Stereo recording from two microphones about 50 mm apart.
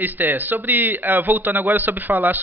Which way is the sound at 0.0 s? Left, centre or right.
Right.